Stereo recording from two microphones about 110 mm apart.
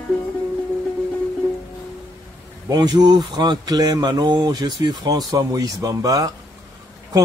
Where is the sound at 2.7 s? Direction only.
40° right (ahead or behind).